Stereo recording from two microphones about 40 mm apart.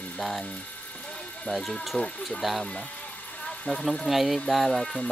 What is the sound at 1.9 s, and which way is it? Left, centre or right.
Speech, left.